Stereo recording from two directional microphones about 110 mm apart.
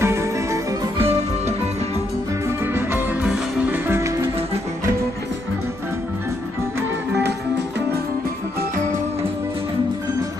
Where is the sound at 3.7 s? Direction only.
20° right (ahead or behind).